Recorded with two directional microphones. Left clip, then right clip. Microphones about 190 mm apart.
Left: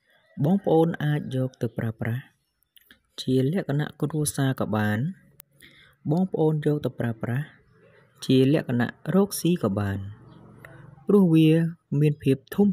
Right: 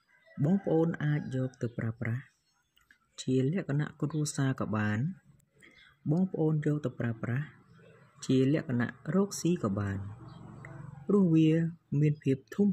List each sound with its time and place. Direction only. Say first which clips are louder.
0.4 s speech: left 8 dB; 35° left (ahead or behind)
6.6 s speech: left 7 dB; 35° left (ahead or behind)